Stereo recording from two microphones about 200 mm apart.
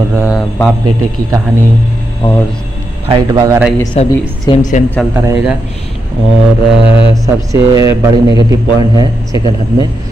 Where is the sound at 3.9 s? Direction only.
30° left (ahead or behind).